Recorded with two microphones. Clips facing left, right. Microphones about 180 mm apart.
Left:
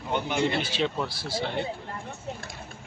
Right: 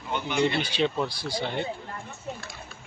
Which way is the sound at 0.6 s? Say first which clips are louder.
Right 2 dB; 5° left (ahead or behind).